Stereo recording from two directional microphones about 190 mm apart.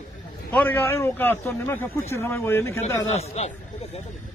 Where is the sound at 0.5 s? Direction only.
10° left (ahead or behind).